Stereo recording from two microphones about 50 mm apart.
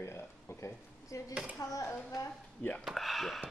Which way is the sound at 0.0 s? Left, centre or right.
Left.